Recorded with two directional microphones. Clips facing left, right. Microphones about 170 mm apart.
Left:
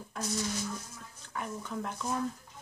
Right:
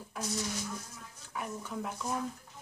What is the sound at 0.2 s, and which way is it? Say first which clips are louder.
Speech: left 2 dB; 5° right (ahead or behind).